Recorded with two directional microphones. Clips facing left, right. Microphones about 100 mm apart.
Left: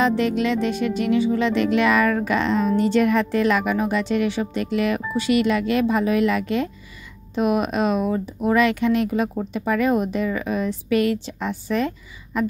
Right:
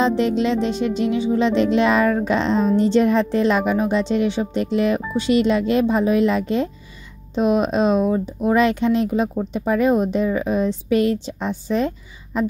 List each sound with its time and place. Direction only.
0.0 s speech: 25° right (ahead or behind)